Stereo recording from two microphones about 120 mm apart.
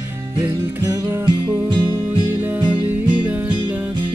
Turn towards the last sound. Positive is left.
turn(degrees=-15)  # may be behind; listen again after turning